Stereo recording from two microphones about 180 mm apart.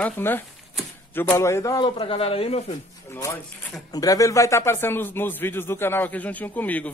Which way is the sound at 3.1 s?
15° left (ahead or behind).